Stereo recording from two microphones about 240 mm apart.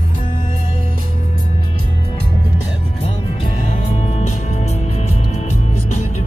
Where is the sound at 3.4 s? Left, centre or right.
Left.